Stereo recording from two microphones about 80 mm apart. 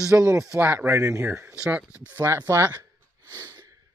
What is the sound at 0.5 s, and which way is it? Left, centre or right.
Speech, right.